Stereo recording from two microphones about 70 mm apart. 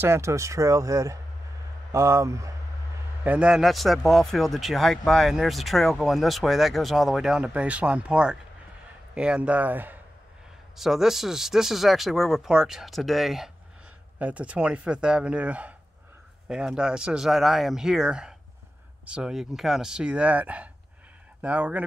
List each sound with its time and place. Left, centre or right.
0.0 s speech: right
3.3 s speech: centre
3.5 s speech: centre
7.4 s speech: centre
10.8 s speech: centre
14.1 s speech: centre